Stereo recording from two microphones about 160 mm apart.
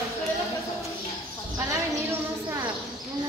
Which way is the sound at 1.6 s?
20° right (ahead or behind).